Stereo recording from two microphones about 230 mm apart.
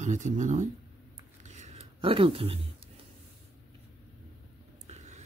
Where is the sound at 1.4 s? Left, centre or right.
Right.